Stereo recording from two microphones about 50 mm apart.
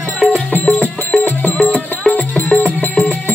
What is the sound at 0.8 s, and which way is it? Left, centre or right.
Music, left.